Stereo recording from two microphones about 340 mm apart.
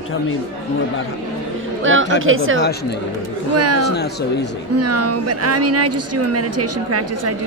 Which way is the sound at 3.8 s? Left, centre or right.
Left.